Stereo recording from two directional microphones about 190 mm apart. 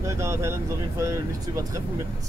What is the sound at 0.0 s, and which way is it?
Speech, 15° right (ahead or behind).